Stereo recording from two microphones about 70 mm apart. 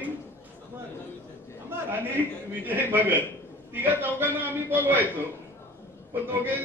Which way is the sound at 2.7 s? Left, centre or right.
Right.